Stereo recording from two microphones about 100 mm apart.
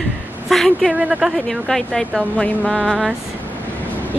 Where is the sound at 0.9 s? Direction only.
10° right (ahead or behind).